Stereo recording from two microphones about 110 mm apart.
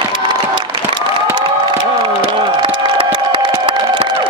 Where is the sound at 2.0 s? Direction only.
45° right (ahead or behind).